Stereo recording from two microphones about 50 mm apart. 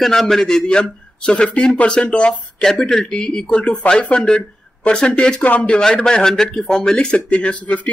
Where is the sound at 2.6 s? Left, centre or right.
Centre.